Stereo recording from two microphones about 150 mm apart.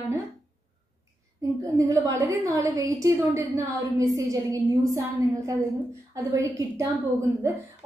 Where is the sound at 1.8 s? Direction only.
20° right (ahead or behind).